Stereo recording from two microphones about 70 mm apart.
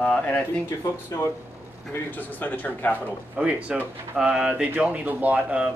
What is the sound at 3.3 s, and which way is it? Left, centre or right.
Speech, centre.